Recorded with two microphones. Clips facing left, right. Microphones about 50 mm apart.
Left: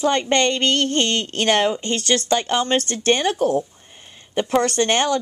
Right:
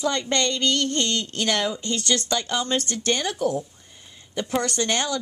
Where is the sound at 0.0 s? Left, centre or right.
Left.